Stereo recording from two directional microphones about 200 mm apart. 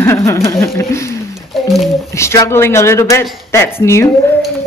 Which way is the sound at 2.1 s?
15° left (ahead or behind).